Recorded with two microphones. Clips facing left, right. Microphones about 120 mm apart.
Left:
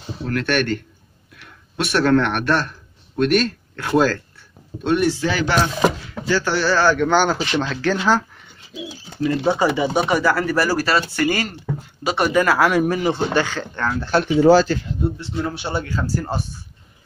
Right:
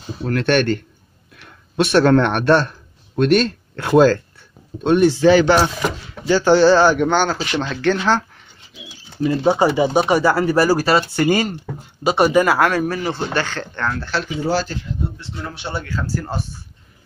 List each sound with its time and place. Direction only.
0.3 s speech: 25° right (ahead or behind)
7.1 s a man's voice: 10° left (ahead or behind)
9.2 s speech: 20° right (ahead or behind)
12.5 s a man's voice: 10° left (ahead or behind)
14.1 s speech: 75° left (ahead or behind)
15.5 s speech: 5° left (ahead or behind)
15.8 s speech: 20° left (ahead or behind)